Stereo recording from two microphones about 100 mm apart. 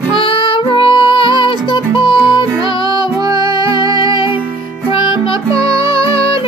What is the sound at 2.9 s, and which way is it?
Music, 40° right (ahead or behind).